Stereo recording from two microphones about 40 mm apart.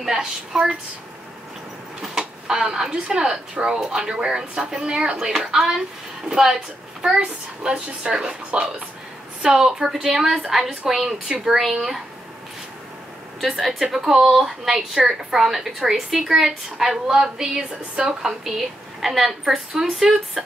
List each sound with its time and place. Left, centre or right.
0.0 s a woman's voice: centre
2.0 s a sound: centre
2.9 s a woman's voice: right
4.1 s a woman's voice: right
9.4 s a woman's voice: centre
13.4 s a woman's voice: centre